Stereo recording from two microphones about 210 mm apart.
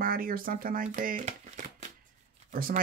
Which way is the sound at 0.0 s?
45° right (ahead or behind).